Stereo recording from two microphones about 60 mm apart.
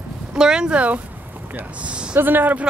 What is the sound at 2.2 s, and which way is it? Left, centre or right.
Speech, right.